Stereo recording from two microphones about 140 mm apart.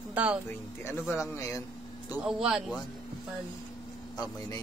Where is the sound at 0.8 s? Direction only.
20° left (ahead or behind).